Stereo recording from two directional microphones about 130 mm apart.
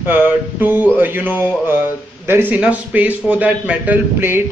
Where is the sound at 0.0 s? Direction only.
15° right (ahead or behind).